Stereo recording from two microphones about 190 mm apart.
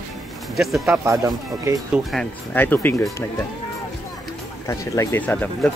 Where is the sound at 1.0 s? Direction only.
15° right (ahead or behind).